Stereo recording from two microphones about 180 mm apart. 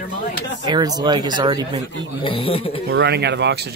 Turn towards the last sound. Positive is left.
turn(degrees=-70)  # may be behind; listen again after turning